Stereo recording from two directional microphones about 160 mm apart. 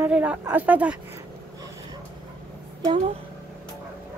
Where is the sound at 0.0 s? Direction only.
10° right (ahead or behind).